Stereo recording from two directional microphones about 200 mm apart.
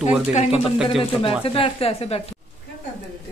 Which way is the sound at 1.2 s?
30° left (ahead or behind).